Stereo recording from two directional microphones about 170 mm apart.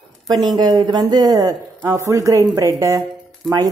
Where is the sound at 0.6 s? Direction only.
25° right (ahead or behind).